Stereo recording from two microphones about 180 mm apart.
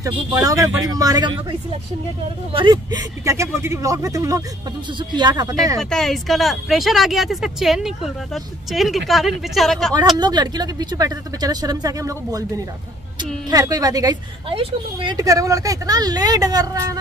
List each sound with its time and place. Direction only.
0.0 s speech: 20° right (ahead or behind)
2.5 s speech: 25° right (ahead or behind)
5.8 s speech: 5° left (ahead or behind)
10.1 s speech: 25° right (ahead or behind)